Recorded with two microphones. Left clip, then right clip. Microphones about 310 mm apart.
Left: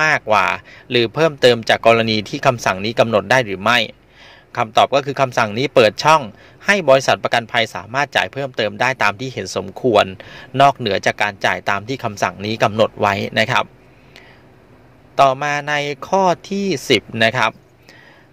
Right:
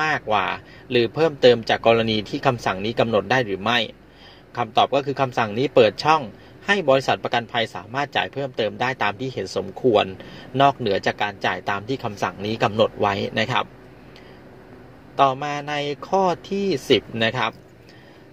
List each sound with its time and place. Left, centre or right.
0.0 s a man's voice: left
15.1 s a man's voice: left